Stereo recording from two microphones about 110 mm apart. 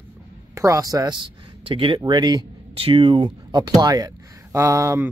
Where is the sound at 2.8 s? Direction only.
55° right (ahead or behind).